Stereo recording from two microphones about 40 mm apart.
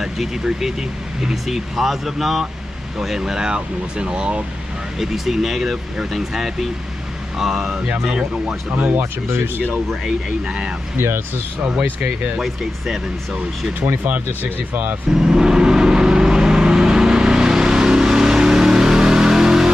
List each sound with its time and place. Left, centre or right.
0.0 s speech: centre
3.2 s speech: centre
4.9 s speech: centre
7.7 s speech: right
8.6 s speech: right
10.0 s speech: right
11.0 s speech: right
11.8 s speech: right
12.4 s speech: centre
14.7 s speech: right
15.0 s vehicle: centre